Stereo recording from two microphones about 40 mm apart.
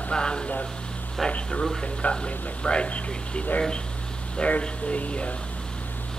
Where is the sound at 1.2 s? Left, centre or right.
Centre.